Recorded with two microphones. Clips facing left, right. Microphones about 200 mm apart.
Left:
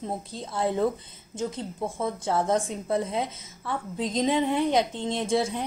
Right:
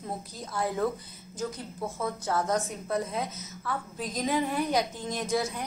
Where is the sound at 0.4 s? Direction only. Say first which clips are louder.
Left 4 dB; 25° left (ahead or behind).